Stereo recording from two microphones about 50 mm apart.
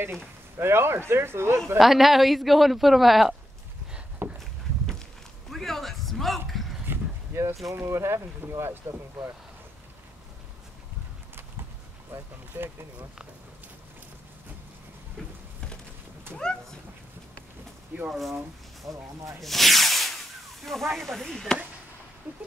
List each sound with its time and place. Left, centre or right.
0.6 s speech: right
1.8 s a man's voice: centre
4.2 s a sound: right
5.5 s a sound: centre
7.3 s speech: right
12.1 s speech: right
15.2 s a sound: centre
16.4 s speech: centre
18.9 s speech: centre
19.4 s rub: centre
20.9 s speech: centre